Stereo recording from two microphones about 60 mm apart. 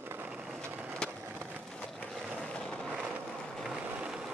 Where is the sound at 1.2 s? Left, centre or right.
Right.